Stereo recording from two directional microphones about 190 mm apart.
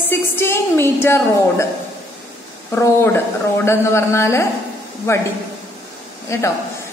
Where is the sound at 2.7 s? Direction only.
10° left (ahead or behind).